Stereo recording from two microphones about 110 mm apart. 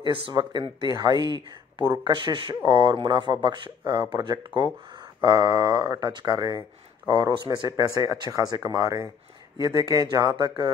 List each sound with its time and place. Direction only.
0.0 s speech: 45° right (ahead or behind)